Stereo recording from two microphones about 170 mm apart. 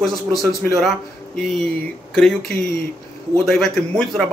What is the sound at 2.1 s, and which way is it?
Speech, 5° left (ahead or behind).